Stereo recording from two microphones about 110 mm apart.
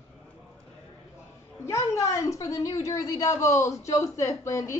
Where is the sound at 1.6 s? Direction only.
25° left (ahead or behind).